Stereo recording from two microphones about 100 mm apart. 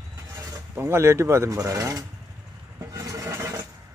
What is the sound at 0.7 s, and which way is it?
Speech, 25° right (ahead or behind).